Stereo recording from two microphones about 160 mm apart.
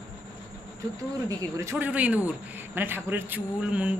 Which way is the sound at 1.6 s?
15° right (ahead or behind).